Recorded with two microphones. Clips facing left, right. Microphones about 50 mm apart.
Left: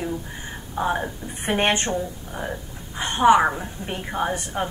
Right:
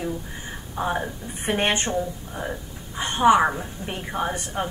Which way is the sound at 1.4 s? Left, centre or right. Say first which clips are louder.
Left 2 dB; centre.